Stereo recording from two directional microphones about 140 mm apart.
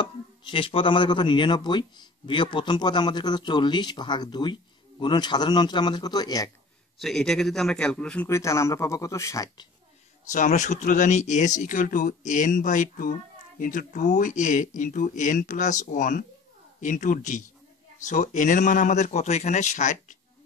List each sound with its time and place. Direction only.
0.0 s speech: 35° left (ahead or behind)
7.0 s speech: centre (ahead or behind)
8.3 s speech: 20° left (ahead or behind)
10.3 s speech: 60° left (ahead or behind)